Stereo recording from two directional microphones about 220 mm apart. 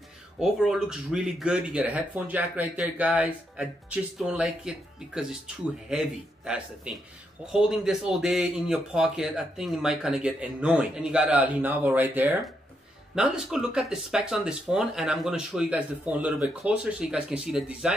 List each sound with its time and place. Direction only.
0.4 s speech: centre (ahead or behind)